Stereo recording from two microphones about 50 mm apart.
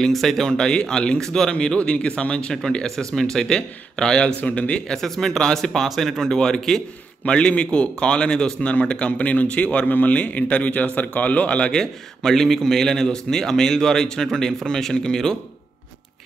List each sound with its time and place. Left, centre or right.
0.0 s a man's voice: centre
4.4 s a man's voice: left
4.8 s a man's voice: centre
7.2 s a man's voice: left
9.8 s a man's voice: left
10.1 s a man's voice: left